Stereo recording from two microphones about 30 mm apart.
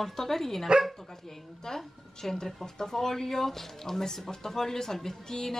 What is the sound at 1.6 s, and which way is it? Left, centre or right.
Speech, centre.